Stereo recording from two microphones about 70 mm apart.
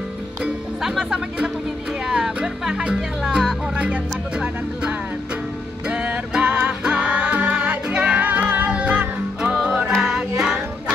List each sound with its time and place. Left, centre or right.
0.8 s music: centre